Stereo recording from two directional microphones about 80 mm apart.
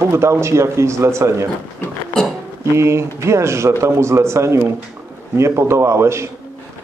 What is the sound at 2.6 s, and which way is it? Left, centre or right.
Speech, right.